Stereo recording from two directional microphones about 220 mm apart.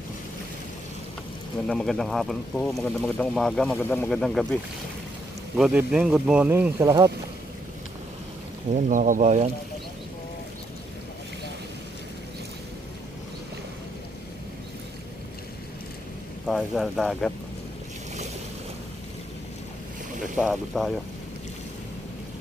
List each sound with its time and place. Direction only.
1.7 s speech: 5° left (ahead or behind)
5.6 s speech: 5° right (ahead or behind)
8.7 s speech: 35° right (ahead or behind)
16.4 s speech: centre (ahead or behind)
20.3 s speech: centre (ahead or behind)